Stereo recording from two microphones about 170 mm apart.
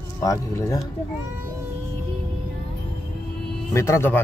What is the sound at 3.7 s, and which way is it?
Speech, 15° left (ahead or behind).